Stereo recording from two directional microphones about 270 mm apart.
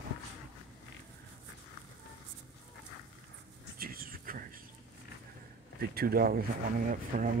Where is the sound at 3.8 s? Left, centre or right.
Right.